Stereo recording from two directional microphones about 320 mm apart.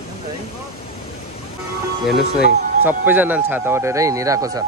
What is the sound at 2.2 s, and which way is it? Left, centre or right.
Speech, left.